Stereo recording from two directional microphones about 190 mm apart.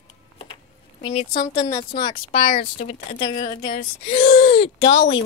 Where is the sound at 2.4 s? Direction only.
50° left (ahead or behind).